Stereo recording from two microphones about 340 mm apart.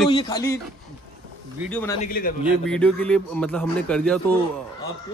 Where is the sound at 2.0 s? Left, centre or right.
Left.